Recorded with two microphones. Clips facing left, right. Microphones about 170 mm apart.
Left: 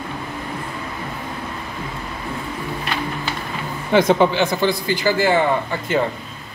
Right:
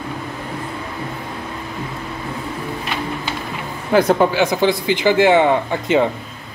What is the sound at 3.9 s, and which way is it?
Speech, 5° right (ahead or behind).